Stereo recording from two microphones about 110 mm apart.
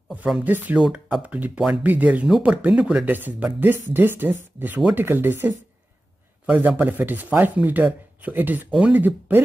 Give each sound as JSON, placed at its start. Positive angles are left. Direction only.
{"t": 0.4, "sound": "a man's voice", "side_deg": -15}